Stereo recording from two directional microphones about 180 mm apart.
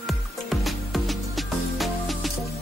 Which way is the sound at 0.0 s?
Centre (ahead or behind).